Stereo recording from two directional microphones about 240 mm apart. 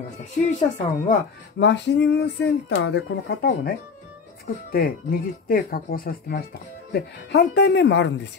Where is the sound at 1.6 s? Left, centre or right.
Left.